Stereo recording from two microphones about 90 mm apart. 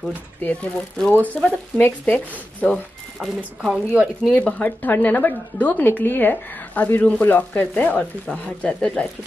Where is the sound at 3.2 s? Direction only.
5° right (ahead or behind).